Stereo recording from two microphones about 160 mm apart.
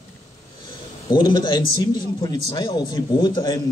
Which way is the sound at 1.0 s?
30° left (ahead or behind).